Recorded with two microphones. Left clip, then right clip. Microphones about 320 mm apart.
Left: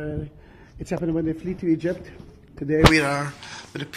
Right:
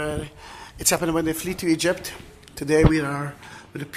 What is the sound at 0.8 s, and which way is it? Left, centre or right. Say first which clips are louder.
Speech: right 4 dB; right.